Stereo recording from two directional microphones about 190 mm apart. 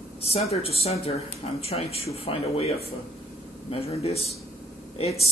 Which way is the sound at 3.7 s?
30° left (ahead or behind).